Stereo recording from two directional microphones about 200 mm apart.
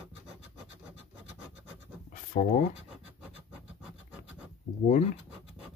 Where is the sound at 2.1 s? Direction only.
45° left (ahead or behind).